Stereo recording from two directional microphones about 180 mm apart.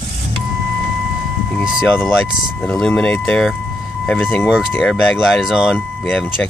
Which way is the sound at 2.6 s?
5° left (ahead or behind).